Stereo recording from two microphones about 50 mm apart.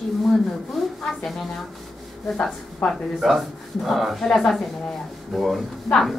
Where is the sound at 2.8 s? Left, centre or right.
Left.